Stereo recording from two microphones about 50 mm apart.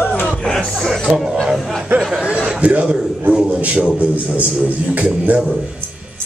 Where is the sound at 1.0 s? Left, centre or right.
Centre.